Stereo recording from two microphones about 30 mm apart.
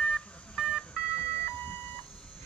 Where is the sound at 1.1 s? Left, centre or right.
Left.